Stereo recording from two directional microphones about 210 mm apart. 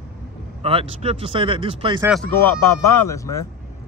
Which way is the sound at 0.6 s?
25° right (ahead or behind).